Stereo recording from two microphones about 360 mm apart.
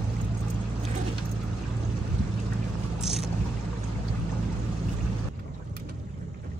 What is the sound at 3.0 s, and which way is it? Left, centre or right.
Boat, centre.